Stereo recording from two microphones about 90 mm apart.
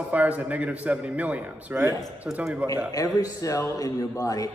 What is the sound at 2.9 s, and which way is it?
Speech, 40° left (ahead or behind).